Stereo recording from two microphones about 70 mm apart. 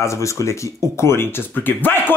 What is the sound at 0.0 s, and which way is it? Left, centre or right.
Speech, left.